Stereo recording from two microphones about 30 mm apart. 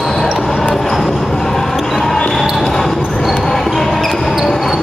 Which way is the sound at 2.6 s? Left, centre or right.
Centre.